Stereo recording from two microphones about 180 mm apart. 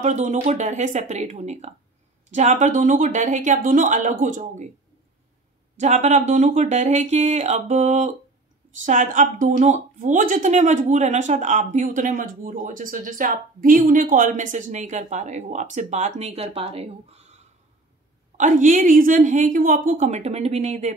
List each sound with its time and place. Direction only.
0.0 s speech: 40° right (ahead or behind)
5.8 s speech: 40° right (ahead or behind)